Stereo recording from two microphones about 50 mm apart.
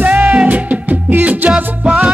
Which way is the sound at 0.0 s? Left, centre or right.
Right.